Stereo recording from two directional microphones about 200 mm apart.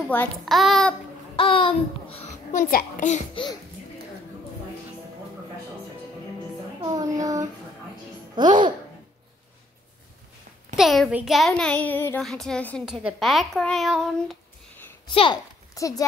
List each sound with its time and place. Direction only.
0.1 s a child's voice: 5° left (ahead or behind)
1.3 s child singing: 25° left (ahead or behind)
2.6 s a child's voice: 45° left (ahead or behind)
6.8 s child singing: 20° right (ahead or behind)
8.4 s speech: 20° right (ahead or behind)
10.8 s a child's voice: centre (ahead or behind)
15.0 s a child's voice: 25° left (ahead or behind)